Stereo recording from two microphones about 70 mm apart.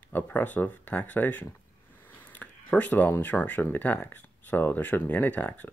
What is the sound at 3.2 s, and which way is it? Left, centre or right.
Speech, left.